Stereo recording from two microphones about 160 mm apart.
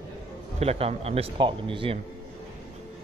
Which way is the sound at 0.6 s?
40° right (ahead or behind).